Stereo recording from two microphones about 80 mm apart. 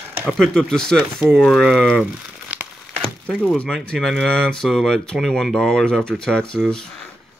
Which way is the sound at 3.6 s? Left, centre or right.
Centre.